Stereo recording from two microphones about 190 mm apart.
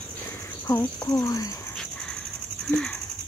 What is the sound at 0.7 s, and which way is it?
Speech, 20° left (ahead or behind).